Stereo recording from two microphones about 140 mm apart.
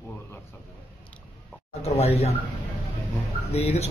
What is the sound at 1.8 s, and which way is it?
Speech, 50° left (ahead or behind).